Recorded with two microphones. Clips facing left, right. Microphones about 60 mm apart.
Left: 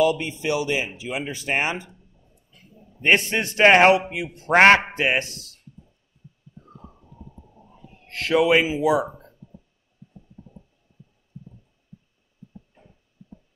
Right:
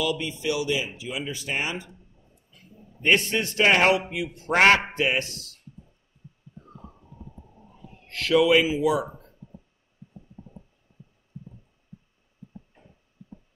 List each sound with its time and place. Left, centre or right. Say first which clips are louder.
0.0 s speech: left 6 dB; left
3.0 s a man's voice: left 2 dB; left
7.6 s a sound: left 1 dB; right
8.1 s a man's voice: left 1 dB; left